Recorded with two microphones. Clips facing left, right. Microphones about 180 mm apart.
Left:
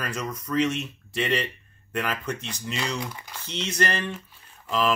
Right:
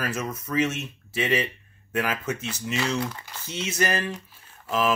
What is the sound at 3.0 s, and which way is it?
Speech, 10° left (ahead or behind).